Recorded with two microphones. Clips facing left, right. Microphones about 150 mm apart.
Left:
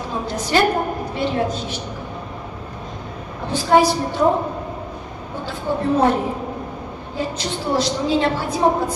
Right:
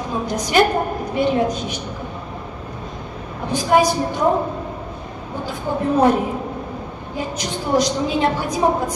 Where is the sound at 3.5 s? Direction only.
15° right (ahead or behind).